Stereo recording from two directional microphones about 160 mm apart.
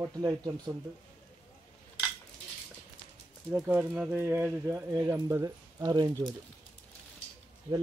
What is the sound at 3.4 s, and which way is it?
Speech, 10° right (ahead or behind).